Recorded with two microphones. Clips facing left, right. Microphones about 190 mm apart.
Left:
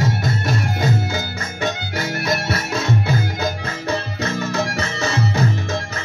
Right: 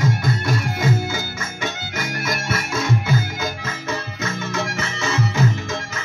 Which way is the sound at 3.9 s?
35° left (ahead or behind).